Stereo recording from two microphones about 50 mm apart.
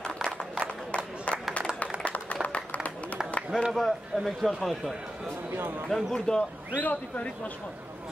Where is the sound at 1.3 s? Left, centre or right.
Left.